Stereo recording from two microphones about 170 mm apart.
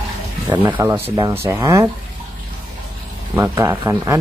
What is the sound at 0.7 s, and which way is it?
Speech, 10° right (ahead or behind).